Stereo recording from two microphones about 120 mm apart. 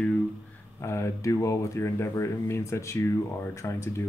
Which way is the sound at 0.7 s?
25° left (ahead or behind).